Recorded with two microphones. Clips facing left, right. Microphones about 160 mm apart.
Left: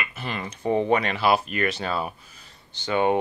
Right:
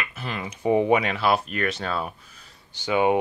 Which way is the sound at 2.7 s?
10° right (ahead or behind).